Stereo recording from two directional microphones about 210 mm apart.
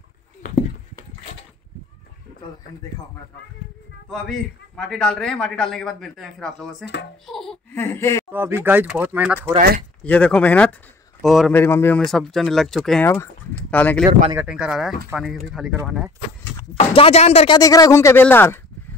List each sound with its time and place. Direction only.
4.1 s a man's voice: centre (ahead or behind)
7.2 s a sound: centre (ahead or behind)
8.3 s speech: 10° right (ahead or behind)
10.0 s a man's voice: 5° left (ahead or behind)
14.3 s a man's voice: 5° right (ahead or behind)
16.7 s speech: 30° left (ahead or behind)
17.6 s speech: 15° left (ahead or behind)